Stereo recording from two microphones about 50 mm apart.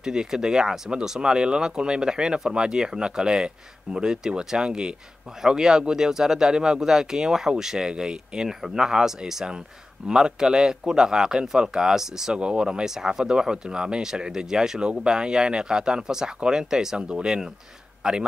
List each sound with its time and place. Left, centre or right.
0.0 s speech: centre